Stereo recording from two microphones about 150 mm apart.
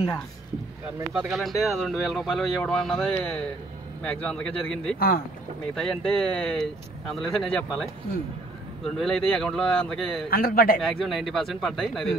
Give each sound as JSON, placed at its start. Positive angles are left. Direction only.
{"t": 1.3, "sound": "speech", "side_deg": 0}
{"t": 4.9, "sound": "speech", "side_deg": 80}
{"t": 5.8, "sound": "speech", "side_deg": 5}
{"t": 9.0, "sound": "speech", "side_deg": 5}
{"t": 10.3, "sound": "a man's voice", "side_deg": 75}
{"t": 10.8, "sound": "speech", "side_deg": 0}